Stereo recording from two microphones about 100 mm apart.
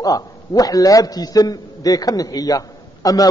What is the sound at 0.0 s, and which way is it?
A man's voice, 40° left (ahead or behind).